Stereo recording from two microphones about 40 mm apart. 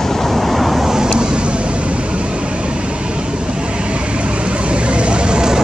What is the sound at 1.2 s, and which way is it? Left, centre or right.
Vehicle, right.